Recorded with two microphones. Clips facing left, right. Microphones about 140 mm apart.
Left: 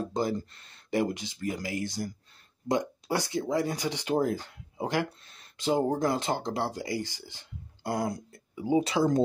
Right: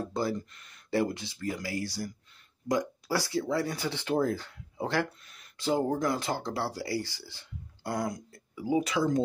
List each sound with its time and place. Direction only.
0.0 s speech: 20° left (ahead or behind)
0.4 s speech: 30° left (ahead or behind)
0.8 s speech: 20° left (ahead or behind)
5.2 s a sound: 30° left (ahead or behind)
5.6 s speech: 20° left (ahead or behind)